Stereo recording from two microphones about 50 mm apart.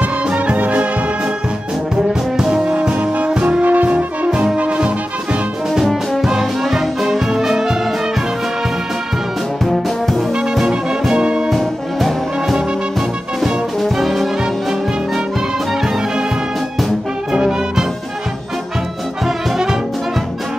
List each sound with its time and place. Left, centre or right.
0.3 s music: right
2.3 s brass instrument: centre
2.6 s music: right
3.6 s music: right
5.8 s music: centre
9.7 s brass instrument: centre
10.7 s music: centre
11.4 s brass instrument: centre
13.4 s music: centre
17.3 s music: centre
19.2 s brass instrument: centre